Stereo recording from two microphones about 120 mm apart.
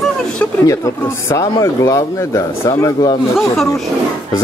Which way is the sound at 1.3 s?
30° left (ahead or behind).